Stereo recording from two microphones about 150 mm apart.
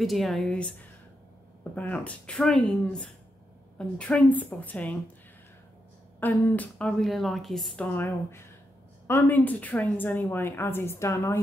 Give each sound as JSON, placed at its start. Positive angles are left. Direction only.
{"t": 0.0, "sound": "a woman's voice", "side_deg": 0}
{"t": 6.1, "sound": "a woman's voice", "side_deg": 10}